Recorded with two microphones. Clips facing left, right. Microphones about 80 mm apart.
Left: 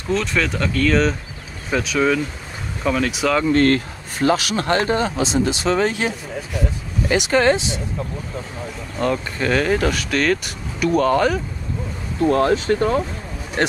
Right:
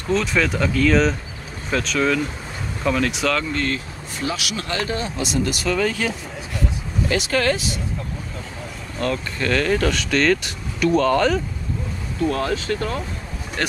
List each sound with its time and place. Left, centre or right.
0.1 s speech: centre
3.5 s speech: left
5.1 s speech: left
8.9 s speech: centre
12.2 s speech: left